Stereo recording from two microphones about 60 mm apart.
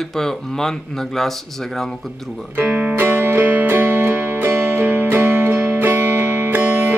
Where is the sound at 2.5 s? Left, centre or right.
Right.